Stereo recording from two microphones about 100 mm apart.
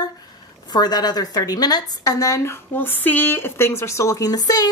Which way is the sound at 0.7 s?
45° left (ahead or behind).